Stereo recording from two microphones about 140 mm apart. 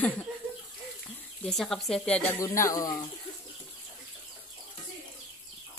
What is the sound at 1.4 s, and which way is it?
Speech, 5° left (ahead or behind).